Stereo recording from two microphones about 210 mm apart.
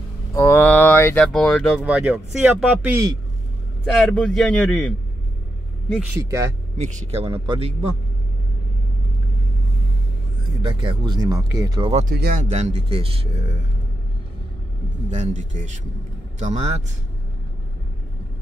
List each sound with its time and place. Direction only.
0.3 s speech: 10° left (ahead or behind)
1.9 s speech: 5° right (ahead or behind)
4.0 s speech: 5° left (ahead or behind)
6.8 s speech: 30° right (ahead or behind)
10.6 s speech: 20° right (ahead or behind)
11.9 s speech: 35° right (ahead or behind)
15.0 s speech: 35° right (ahead or behind)